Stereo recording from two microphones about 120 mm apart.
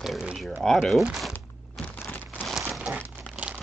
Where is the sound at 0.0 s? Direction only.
5° right (ahead or behind).